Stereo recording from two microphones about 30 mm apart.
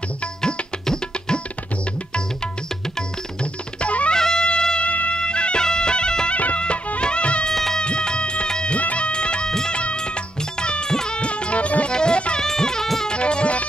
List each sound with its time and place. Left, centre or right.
3.8 s music: left
4.1 s music: left
4.8 s music: left
5.1 s music: left
5.6 s bagpipes: left
6.3 s music: left
7.0 s music: left
7.5 s music: centre
7.8 s music: left
8.7 s music: left
10.6 s a sound: left
11.1 s music: left
11.9 s music: left
13.1 s music: left